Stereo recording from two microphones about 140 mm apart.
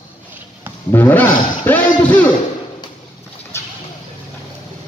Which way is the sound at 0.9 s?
15° left (ahead or behind).